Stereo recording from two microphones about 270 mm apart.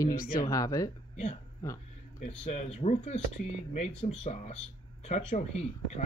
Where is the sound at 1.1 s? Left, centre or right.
Left.